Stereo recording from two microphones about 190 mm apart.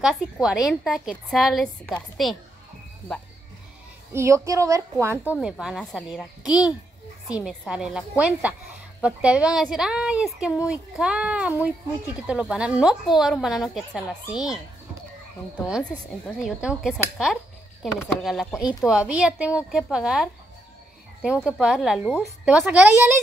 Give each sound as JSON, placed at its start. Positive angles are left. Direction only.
{"t": 0.0, "sound": "speech", "side_deg": -5}
{"t": 4.1, "sound": "a woman's voice", "side_deg": -15}
{"t": 16.1, "sound": "speech", "side_deg": -5}
{"t": 18.6, "sound": "a woman's voice", "side_deg": 20}
{"t": 18.9, "sound": "speech", "side_deg": -5}